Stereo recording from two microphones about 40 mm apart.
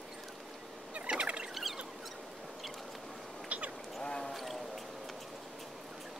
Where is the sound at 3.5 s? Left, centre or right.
Right.